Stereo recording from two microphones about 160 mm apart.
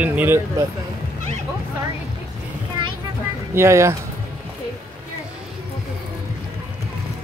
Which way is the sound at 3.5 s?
15° right (ahead or behind).